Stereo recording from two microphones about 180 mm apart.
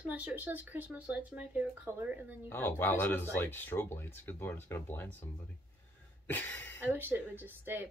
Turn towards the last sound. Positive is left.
turn(degrees=-10)  # may be behind; listen again after turning